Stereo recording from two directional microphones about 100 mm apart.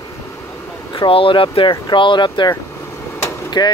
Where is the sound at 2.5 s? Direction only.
25° left (ahead or behind).